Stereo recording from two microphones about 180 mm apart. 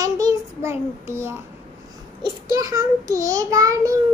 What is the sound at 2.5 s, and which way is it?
A child's voice, 20° right (ahead or behind).